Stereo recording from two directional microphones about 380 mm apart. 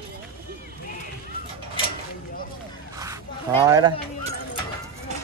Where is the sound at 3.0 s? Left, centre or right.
Centre.